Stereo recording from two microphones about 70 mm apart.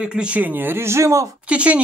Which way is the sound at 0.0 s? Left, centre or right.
Centre.